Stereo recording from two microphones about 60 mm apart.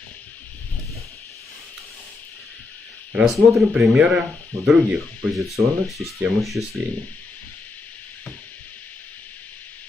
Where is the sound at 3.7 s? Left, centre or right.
Centre.